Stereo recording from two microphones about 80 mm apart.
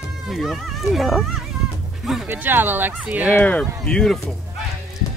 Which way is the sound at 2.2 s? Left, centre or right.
Right.